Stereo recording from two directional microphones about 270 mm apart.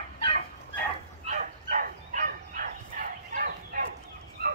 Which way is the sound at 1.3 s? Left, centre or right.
Right.